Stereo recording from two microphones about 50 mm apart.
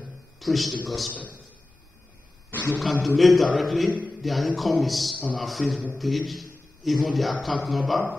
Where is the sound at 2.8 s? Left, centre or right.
Centre.